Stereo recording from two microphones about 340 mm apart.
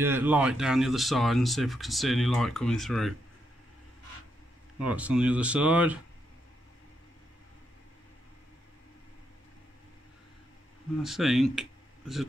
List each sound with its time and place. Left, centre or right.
0.0 s speech: centre
4.7 s speech: centre
11.0 s speech: centre